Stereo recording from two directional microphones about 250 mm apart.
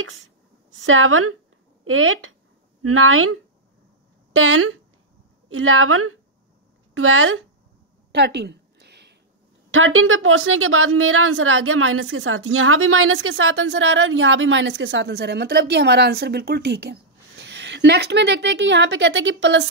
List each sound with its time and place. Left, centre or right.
0.8 s a woman's voice: right
8.1 s a sound: right
9.7 s a woman's voice: right